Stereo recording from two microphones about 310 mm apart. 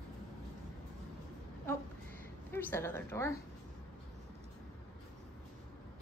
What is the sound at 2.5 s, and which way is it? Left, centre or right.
Speech, centre.